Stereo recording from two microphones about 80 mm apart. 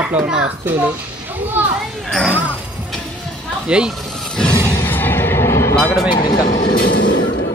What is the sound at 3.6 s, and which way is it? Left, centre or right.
Speech, centre.